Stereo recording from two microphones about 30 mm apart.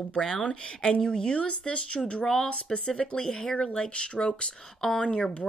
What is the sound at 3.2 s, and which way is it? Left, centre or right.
Speech, left.